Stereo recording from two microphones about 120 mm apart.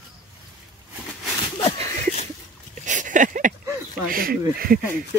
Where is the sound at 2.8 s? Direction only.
90° right.